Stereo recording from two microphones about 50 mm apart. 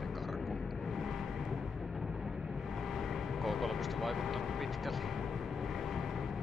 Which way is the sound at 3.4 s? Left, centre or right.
Centre.